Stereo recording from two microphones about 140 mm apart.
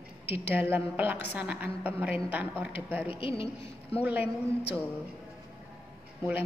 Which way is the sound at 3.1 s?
40° left (ahead or behind).